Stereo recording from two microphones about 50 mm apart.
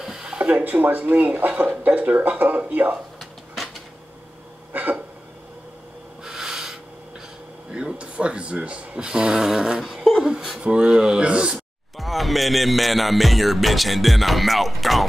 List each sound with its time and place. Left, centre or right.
0.0 s a sound: centre
0.4 s speech: right
3.2 s a sound: centre
6.2 s snort: centre
7.7 s speech: right
12.0 s music: centre